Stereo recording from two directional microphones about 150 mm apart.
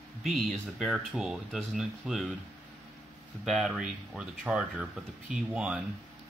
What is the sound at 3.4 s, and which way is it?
Speech, centre (ahead or behind).